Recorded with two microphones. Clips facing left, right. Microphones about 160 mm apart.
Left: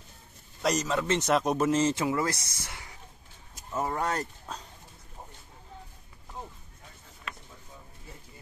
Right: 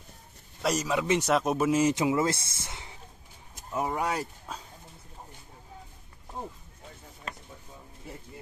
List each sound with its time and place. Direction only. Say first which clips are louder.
0.6 s speech: even; 5° right (ahead or behind); by 3.0 s 25° right (ahead or behind)
3.7 s speech: even; 10° right (ahead or behind)
7.3 s a sound: right 2 dB; 40° right (ahead or behind)